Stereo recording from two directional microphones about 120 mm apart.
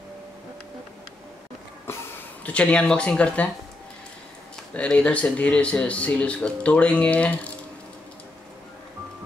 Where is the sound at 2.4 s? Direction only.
10° left (ahead or behind).